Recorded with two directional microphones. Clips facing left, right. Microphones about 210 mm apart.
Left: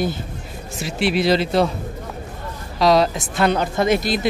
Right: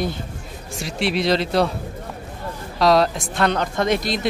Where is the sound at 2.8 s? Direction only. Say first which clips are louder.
Left 1 dB; centre (ahead or behind).